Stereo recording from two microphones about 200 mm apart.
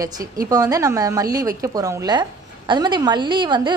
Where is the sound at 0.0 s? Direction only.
15° right (ahead or behind).